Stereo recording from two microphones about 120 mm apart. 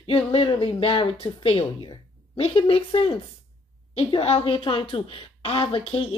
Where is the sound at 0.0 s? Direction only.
50° left (ahead or behind).